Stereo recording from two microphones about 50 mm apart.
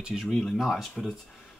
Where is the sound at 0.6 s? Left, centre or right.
Centre.